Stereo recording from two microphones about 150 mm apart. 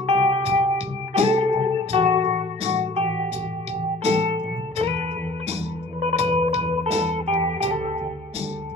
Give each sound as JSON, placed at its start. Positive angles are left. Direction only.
{"t": 0.0, "sound": "music", "side_deg": -40}